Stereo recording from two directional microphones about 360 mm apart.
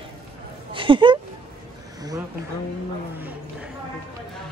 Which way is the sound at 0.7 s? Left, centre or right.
Centre.